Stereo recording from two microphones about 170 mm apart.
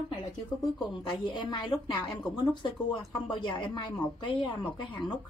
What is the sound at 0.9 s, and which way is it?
Speech, 25° left (ahead or behind).